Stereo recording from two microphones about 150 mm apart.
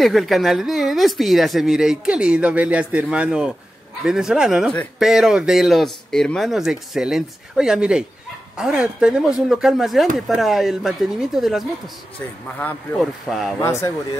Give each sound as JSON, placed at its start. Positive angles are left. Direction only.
{"t": 0.0, "sound": "speech", "side_deg": 0}
{"t": 13.0, "sound": "speech", "side_deg": 0}
{"t": 13.6, "sound": "speech", "side_deg": 15}